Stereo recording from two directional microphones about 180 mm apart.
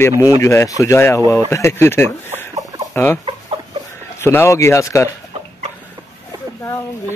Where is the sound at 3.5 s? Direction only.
30° right (ahead or behind).